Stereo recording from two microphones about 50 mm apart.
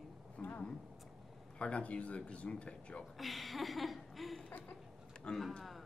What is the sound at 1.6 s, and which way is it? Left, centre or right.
Speech, left.